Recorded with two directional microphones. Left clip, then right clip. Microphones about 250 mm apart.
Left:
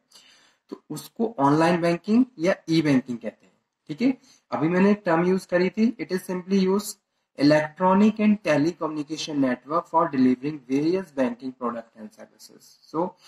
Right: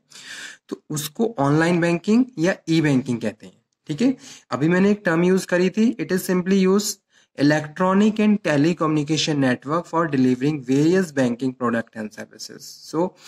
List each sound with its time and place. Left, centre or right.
0.7 s speech: right